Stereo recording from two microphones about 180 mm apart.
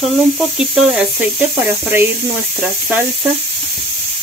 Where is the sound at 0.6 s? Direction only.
5° right (ahead or behind).